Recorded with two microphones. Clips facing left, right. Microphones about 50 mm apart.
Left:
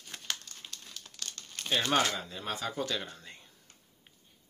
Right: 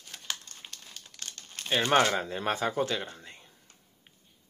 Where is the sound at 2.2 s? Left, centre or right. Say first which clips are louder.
Right 7 dB; right.